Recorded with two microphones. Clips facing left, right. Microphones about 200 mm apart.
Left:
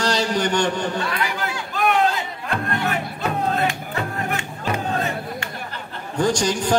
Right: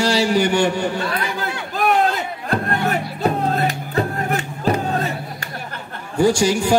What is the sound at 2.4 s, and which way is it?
Music, 40° right (ahead or behind).